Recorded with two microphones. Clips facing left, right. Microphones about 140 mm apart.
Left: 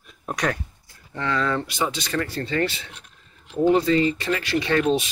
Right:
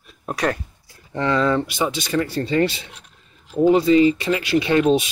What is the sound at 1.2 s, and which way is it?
Speech, 20° right (ahead or behind).